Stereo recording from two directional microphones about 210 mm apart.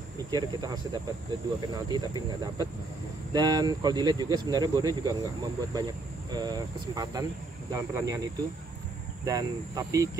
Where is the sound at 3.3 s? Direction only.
20° right (ahead or behind).